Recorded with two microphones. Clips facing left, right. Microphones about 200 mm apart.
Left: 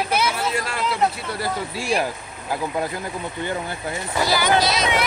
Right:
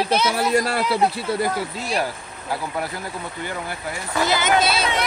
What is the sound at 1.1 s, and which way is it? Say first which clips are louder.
Speech: right 5 dB; 25° right (ahead or behind).